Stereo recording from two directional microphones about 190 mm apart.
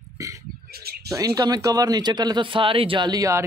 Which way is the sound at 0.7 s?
55° right (ahead or behind).